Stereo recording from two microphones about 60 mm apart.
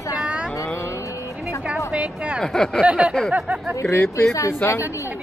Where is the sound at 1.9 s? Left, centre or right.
Right.